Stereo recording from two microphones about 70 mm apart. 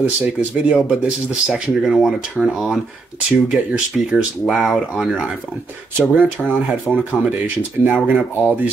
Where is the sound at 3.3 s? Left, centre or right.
Centre.